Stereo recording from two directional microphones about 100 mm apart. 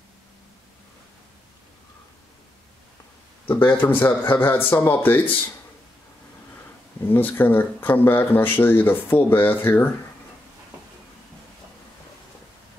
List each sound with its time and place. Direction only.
3.4 s speech: 20° left (ahead or behind)
7.1 s speech: 20° left (ahead or behind)